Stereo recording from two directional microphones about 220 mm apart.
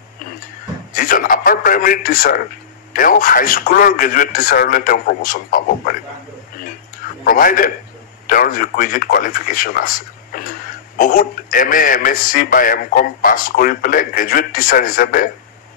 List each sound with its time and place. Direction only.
0.9 s a man's voice: 40° left (ahead or behind)
7.2 s a man's voice: 40° left (ahead or behind)